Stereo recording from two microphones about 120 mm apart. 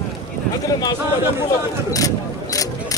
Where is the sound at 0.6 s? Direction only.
35° left (ahead or behind).